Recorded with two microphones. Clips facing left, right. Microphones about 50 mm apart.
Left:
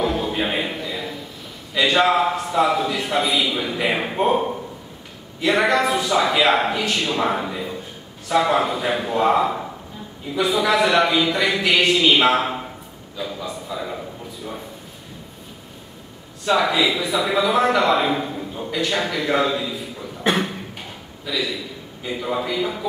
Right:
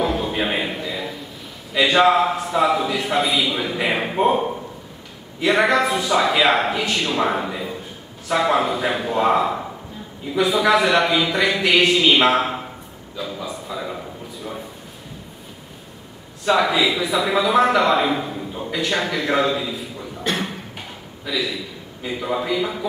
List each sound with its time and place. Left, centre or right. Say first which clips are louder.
0.0 s a sound: even; centre
1.7 s a man's voice: right 2 dB; centre
16.4 s a man's voice: right 1 dB; centre
21.3 s a man's voice: even; centre